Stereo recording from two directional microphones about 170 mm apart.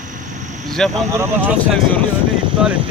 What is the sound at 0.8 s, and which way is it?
Speech, 5° left (ahead or behind).